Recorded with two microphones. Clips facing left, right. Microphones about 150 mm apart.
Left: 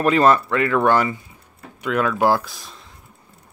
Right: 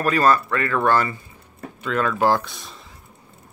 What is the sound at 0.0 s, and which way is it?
Speech, 20° left (ahead or behind).